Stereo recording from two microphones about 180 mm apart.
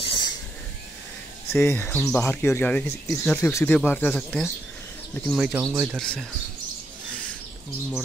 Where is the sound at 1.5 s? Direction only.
15° left (ahead or behind); by 6.0 s 10° right (ahead or behind).